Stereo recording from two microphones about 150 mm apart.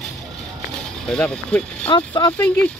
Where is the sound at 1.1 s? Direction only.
5° left (ahead or behind).